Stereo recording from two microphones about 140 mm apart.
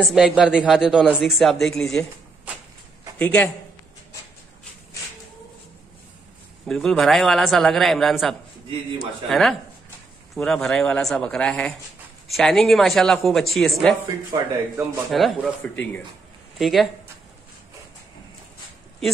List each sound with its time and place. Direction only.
0.1 s a man's voice: 5° right (ahead or behind)
3.2 s a man's voice: 10° left (ahead or behind)
6.6 s a man's voice: centre (ahead or behind)
8.6 s a man's voice: 30° right (ahead or behind)
9.3 s a man's voice: centre (ahead or behind)
14.3 s speech: 25° right (ahead or behind)
14.8 s a man's voice: centre (ahead or behind)
15.6 s speech: 10° left (ahead or behind)
16.5 s a man's voice: centre (ahead or behind)